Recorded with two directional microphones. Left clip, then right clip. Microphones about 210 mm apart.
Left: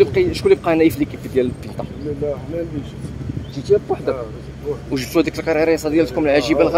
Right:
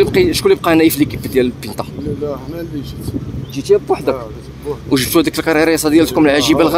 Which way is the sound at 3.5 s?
35° right (ahead or behind).